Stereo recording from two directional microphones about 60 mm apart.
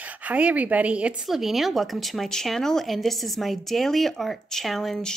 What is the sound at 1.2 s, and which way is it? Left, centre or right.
Speech, centre.